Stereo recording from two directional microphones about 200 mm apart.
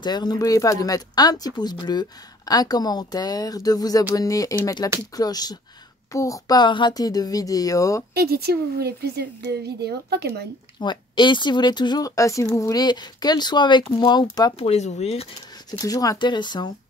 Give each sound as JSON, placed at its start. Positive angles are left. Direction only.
{"t": 0.0, "sound": "speech", "side_deg": 20}
{"t": 8.1, "sound": "speech", "side_deg": -55}
{"t": 10.8, "sound": "speech", "side_deg": 20}
{"t": 15.8, "sound": "speech", "side_deg": 20}